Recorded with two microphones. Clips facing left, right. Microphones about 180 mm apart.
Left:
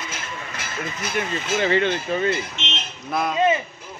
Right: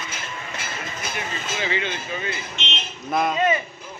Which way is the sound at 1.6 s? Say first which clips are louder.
Left 7 dB; 55° left (ahead or behind).